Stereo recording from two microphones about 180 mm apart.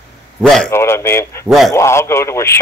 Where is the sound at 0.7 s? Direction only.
15° left (ahead or behind).